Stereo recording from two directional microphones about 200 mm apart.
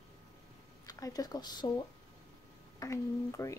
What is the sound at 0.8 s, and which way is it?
Speech, 20° left (ahead or behind).